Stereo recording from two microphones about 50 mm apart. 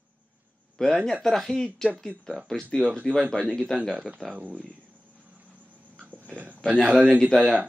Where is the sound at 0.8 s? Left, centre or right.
Centre.